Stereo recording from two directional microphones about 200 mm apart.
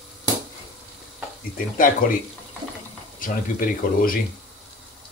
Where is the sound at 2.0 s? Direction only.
45° left (ahead or behind).